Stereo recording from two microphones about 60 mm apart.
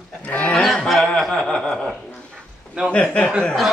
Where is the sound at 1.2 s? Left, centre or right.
Centre.